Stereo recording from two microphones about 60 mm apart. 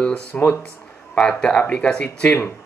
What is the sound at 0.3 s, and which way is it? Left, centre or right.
Speech, left.